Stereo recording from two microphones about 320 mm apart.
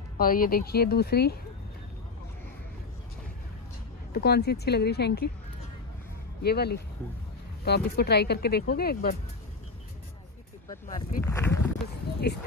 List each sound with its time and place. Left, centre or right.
0.2 s speech: left
4.1 s speech: left
6.4 s speech: left
11.0 s speech: centre